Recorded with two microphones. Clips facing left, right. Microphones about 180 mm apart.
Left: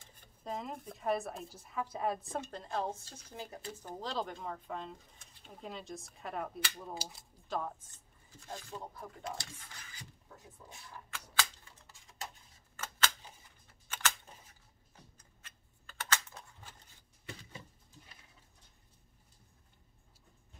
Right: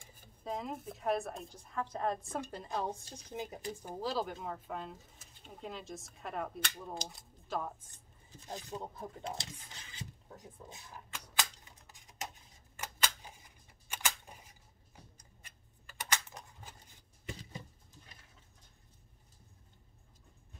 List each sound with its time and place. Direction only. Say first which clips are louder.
0.0 s speech: right 1 dB; 5° right (ahead or behind)
2.7 s speech: left 1 dB; 15° right (ahead or behind)
8.4 s a sound: right 2 dB; 20° right (ahead or behind)
15.1 s typing: right 1 dB; 15° right (ahead or behind)